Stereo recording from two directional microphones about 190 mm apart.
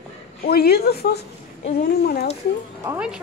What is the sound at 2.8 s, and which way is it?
Speech, 10° right (ahead or behind).